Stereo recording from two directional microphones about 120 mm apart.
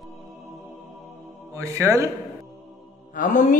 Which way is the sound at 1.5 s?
25° right (ahead or behind).